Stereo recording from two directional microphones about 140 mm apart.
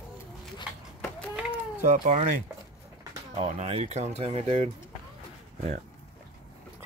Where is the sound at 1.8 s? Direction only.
60° right (ahead or behind).